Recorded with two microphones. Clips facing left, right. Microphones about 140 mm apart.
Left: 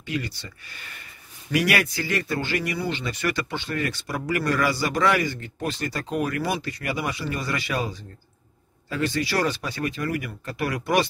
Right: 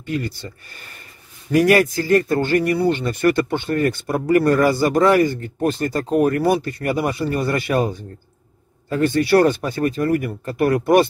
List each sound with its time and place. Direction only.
0.0 s speech: 50° right (ahead or behind)